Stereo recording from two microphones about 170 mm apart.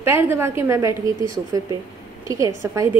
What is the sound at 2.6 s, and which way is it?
Speech, 15° right (ahead or behind).